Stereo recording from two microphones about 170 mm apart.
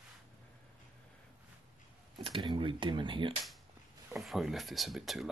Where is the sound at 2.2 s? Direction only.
30° right (ahead or behind).